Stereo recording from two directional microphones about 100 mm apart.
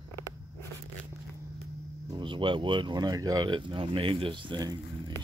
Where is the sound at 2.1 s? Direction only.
55° right (ahead or behind); by 3.5 s 40° right (ahead or behind).